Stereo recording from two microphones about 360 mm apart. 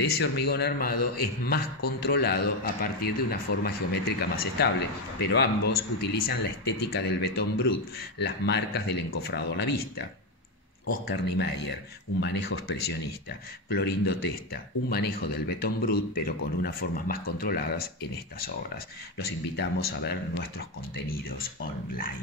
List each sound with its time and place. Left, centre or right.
0.0 s speech: left
11.1 s speech: left
13.7 s speech: left
19.1 s speech: left